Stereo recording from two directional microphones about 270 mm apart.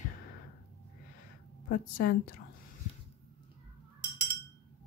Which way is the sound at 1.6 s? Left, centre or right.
Left.